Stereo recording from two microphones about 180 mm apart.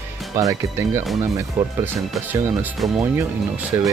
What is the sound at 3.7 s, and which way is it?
Speech, 15° right (ahead or behind).